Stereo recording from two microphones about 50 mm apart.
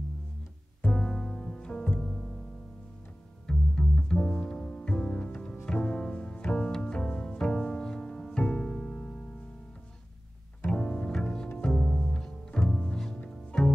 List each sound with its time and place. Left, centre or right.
0.9 s music: centre
2.0 s music: centre
3.4 s music: centre
10.6 s bowed string instrument: centre
11.1 s music: centre